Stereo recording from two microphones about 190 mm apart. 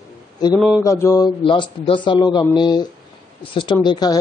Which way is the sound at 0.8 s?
15° left (ahead or behind).